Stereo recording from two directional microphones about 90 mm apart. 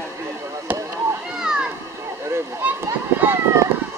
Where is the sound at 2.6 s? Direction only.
20° right (ahead or behind).